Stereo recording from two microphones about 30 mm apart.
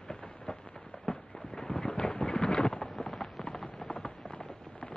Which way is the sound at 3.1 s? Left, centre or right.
Centre.